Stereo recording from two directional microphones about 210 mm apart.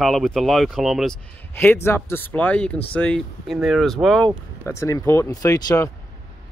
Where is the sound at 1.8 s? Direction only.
10° left (ahead or behind).